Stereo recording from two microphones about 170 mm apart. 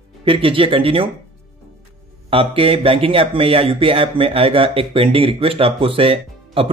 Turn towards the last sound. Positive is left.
turn(degrees=-35)  # may be behind; listen again after turning